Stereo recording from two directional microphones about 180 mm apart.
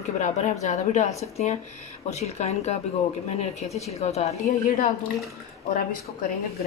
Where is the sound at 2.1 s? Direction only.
40° left (ahead or behind).